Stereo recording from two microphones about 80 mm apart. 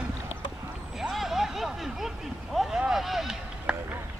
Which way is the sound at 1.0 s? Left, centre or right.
Centre.